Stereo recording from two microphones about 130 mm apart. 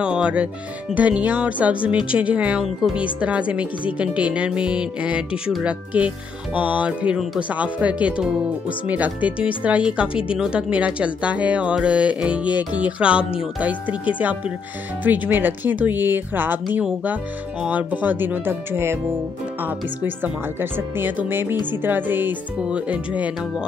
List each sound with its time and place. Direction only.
0.0 s speech: 5° right (ahead or behind)